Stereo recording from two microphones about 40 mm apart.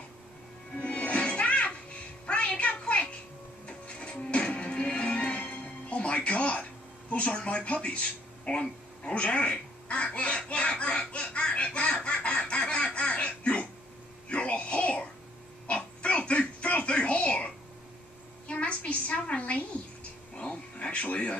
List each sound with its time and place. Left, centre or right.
0.7 s music: left
7.1 s speech: left
8.5 s duck: left
14.3 s a sound: left
15.6 s music: left
18.5 s a sound: left
20.9 s speech: left